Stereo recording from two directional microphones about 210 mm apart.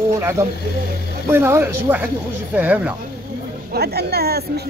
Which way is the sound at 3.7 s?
50° right (ahead or behind).